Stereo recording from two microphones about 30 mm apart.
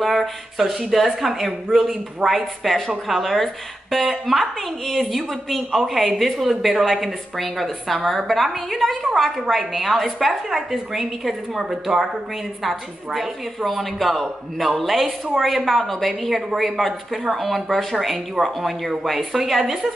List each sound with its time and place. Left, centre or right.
0.0 s a woman's voice: centre
1.0 s speech: centre
2.6 s a woman's voice: centre
12.6 s a woman's voice: centre